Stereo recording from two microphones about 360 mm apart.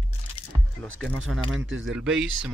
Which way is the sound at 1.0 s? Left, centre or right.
Centre.